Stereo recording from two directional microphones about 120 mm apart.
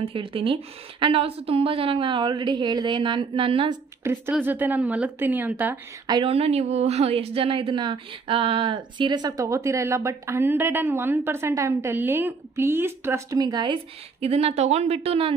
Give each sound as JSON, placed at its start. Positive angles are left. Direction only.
{"t": 0.0, "sound": "speech", "side_deg": -50}
{"t": 4.0, "sound": "a woman's voice", "side_deg": -15}
{"t": 6.2, "sound": "speech", "side_deg": -55}
{"t": 14.2, "sound": "speech", "side_deg": -60}